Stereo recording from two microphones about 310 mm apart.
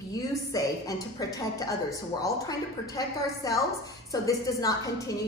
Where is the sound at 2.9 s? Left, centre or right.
Centre.